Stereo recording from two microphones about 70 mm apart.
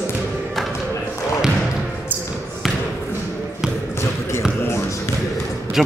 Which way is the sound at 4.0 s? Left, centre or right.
Left.